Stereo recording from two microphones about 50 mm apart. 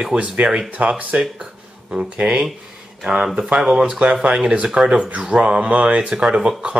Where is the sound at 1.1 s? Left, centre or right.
Centre.